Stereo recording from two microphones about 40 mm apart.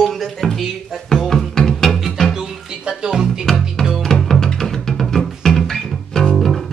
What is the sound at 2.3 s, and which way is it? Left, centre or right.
Music, centre.